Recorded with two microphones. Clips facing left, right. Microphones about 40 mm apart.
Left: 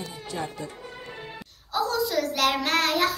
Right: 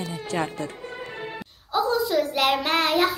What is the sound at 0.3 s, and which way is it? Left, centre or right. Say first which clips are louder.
Speech: right 5 dB; right.